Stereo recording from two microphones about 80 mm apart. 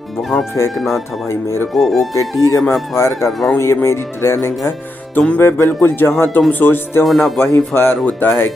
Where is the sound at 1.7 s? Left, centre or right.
Centre.